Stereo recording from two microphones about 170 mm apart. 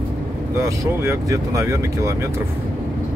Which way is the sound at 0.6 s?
20° right (ahead or behind).